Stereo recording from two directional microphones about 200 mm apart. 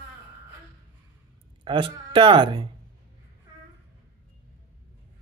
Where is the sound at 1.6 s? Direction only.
25° right (ahead or behind).